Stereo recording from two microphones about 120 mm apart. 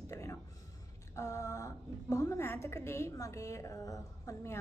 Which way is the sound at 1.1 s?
25° left (ahead or behind).